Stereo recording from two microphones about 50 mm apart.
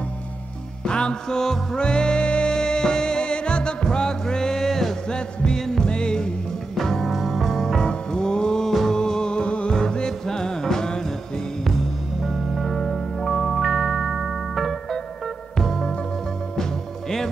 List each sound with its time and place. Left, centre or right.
0.8 s music: centre